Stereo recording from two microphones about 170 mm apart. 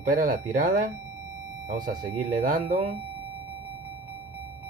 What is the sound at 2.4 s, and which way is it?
Speech, 55° right (ahead or behind).